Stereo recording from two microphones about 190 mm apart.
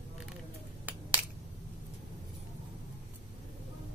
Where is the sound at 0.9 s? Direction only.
10° right (ahead or behind).